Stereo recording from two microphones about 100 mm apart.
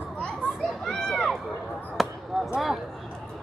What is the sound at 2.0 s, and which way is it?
Basketball bounce, centre (ahead or behind).